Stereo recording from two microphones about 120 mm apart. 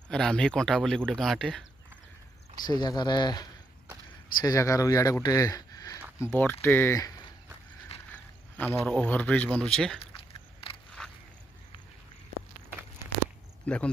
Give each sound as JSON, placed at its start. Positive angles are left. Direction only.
{"t": 0.1, "sound": "speech", "side_deg": 5}
{"t": 2.6, "sound": "speech", "side_deg": 35}
{"t": 8.1, "sound": "speech", "side_deg": 15}
{"t": 10.1, "sound": "a sound", "side_deg": 50}
{"t": 11.0, "sound": "a sound", "side_deg": 5}
{"t": 13.7, "sound": "speech", "side_deg": 10}